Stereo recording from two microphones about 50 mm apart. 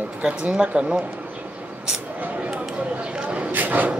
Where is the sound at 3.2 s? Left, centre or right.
Right.